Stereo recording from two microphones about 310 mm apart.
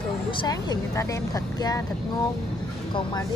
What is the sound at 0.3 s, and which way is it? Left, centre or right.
Speech, centre.